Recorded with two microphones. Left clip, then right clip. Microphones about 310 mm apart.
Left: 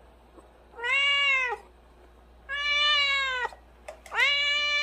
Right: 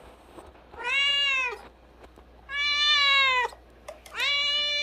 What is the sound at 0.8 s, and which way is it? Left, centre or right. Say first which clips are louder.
Cat: left 1 dB; centre.